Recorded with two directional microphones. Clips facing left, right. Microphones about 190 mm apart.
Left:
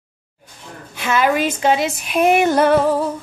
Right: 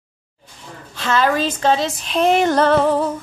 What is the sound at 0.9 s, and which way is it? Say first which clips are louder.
A woman's voice: left 1 dB; 15° left (ahead or behind).